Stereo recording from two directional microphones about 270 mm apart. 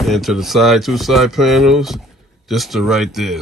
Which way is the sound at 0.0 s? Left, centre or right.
Centre.